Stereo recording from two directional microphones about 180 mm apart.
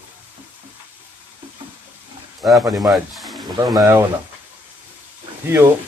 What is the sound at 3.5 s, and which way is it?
Speech, 20° right (ahead or behind).